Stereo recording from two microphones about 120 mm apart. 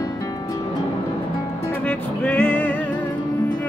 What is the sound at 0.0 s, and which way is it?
Music, 30° left (ahead or behind).